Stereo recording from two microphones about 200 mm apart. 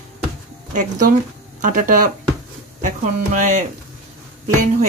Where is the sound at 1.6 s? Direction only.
40° right (ahead or behind).